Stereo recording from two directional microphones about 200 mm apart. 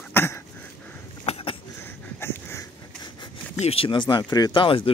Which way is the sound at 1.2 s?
30° left (ahead or behind).